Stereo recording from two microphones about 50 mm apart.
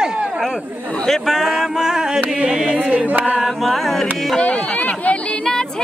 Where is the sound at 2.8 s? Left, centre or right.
Right.